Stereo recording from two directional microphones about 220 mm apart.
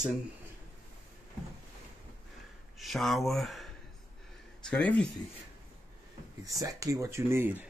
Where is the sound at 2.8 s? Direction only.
Centre (ahead or behind).